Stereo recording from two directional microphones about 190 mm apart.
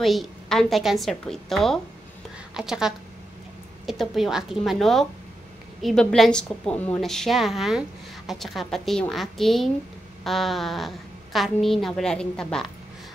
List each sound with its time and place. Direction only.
0.0 s a woman's voice: centre (ahead or behind)